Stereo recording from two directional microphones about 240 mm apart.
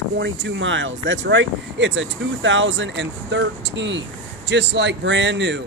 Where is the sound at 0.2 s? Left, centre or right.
Right.